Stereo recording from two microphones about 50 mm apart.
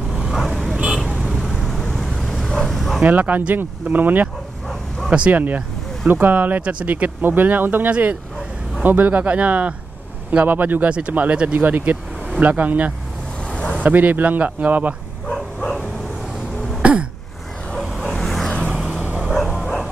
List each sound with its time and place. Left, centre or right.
0.5 s vehicle: centre
2.5 s dog: centre
3.0 s speech: right
5.3 s speech: right
6.6 s speech: right
6.9 s speech: right
7.9 s speech: right
13.5 s vehicle: left
13.8 s speech: right
15.3 s bow-wow: centre
16.8 s throat clearing: right
17.7 s vehicle: centre
19.3 s bow-wow: centre